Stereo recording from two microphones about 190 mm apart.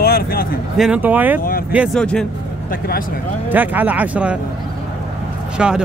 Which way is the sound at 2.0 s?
5° left (ahead or behind).